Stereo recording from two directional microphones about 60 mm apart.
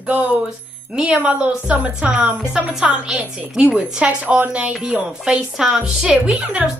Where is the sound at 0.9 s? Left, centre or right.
Centre.